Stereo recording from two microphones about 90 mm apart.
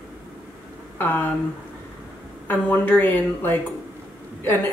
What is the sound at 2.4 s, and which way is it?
Speech, 20° left (ahead or behind).